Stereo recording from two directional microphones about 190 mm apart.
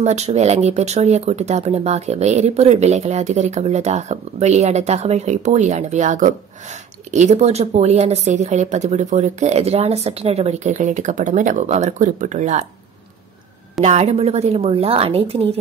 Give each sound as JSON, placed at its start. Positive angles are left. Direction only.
{"t": 0.0, "sound": "speech", "side_deg": -35}
{"t": 13.7, "sound": "speech", "side_deg": -35}